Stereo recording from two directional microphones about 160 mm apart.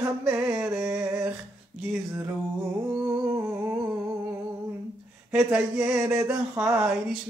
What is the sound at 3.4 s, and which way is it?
Humming, 15° right (ahead or behind).